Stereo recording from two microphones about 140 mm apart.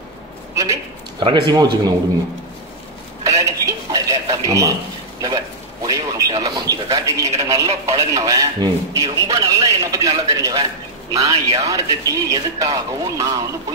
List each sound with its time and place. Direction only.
1.2 s speech: 35° right (ahead or behind)
3.3 s a sound: 25° right (ahead or behind)
5.2 s a man's voice: 25° right (ahead or behind)